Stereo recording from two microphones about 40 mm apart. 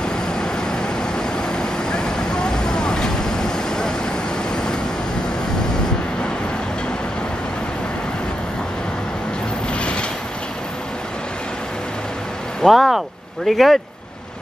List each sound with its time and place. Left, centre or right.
0.0 s vehicle: centre
9.8 s vehicle: left
12.6 s a sound: centre
13.5 s speech: centre